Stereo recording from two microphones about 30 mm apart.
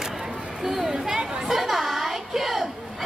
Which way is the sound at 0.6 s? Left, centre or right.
Centre.